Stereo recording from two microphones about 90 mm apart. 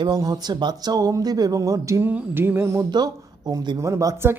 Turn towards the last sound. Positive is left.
turn(degrees=-30)  # may be behind; listen again after turning